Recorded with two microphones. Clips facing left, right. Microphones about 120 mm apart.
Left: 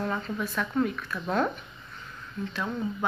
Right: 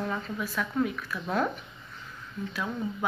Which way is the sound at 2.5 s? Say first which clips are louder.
Left 1 dB; centre (ahead or behind).